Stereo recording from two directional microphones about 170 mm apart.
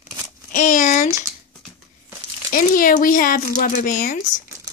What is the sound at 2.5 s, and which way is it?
Speech, 55° left (ahead or behind).